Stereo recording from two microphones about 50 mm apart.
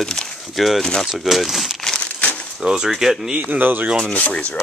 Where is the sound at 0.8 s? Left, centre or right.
Centre.